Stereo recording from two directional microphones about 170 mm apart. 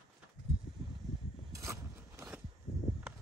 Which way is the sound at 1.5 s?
15° right (ahead or behind).